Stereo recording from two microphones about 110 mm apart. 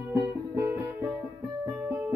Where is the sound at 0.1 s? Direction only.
20° right (ahead or behind).